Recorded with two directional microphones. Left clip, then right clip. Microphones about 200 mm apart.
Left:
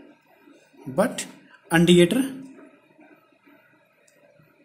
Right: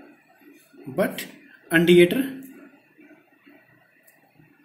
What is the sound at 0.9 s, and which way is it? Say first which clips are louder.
Speech: left 2 dB; 35° left (ahead or behind).